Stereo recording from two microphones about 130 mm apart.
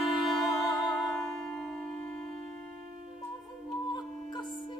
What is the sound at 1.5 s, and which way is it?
Music, 5° left (ahead or behind).